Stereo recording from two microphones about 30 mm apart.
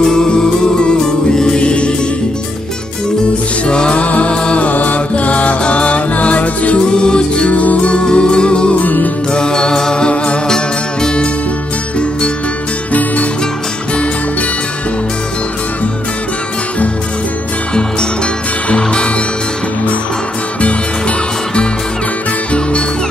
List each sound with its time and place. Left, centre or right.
0.0 s music: left
1.6 s music: left
3.6 s music: left
3.9 s music: left
4.6 s music: left
5.1 s music: left
6.9 s music: left
7.4 s music: left
7.9 s music: left
8.7 s music: left
9.3 s mantra: left
22.5 s music: left